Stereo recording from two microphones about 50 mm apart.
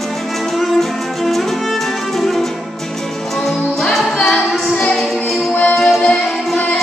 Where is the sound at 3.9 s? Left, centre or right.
Centre.